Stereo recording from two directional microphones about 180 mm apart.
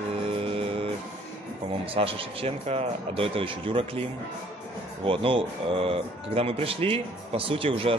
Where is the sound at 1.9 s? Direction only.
30° right (ahead or behind).